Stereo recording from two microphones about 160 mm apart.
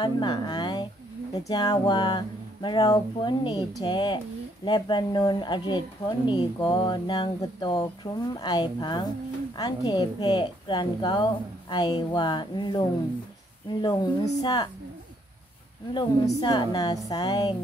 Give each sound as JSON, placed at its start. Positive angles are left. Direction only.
{"t": 0.0, "sound": "a woman's voice", "side_deg": 30}
{"t": 15.9, "sound": "speech", "side_deg": 25}